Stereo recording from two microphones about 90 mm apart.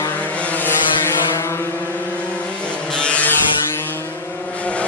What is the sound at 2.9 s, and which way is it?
Vehicle, 15° left (ahead or behind).